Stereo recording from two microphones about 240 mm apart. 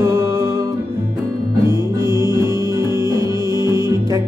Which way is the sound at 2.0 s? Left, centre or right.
Centre.